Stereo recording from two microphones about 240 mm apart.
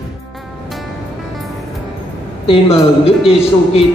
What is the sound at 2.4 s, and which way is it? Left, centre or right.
A man's voice, left.